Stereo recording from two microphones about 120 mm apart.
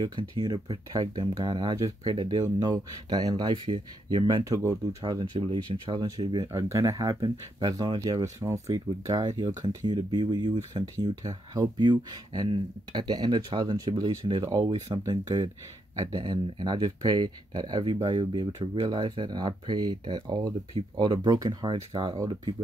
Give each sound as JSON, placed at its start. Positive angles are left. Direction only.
{"t": 0.0, "sound": "speech", "side_deg": -40}
{"t": 4.5, "sound": "speech", "side_deg": -30}
{"t": 8.2, "sound": "speech", "side_deg": -25}